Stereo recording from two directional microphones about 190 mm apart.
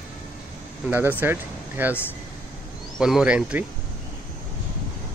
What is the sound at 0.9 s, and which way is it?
Speech, 10° right (ahead or behind).